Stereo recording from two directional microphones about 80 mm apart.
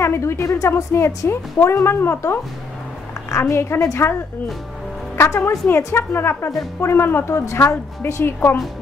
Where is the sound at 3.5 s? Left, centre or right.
Left.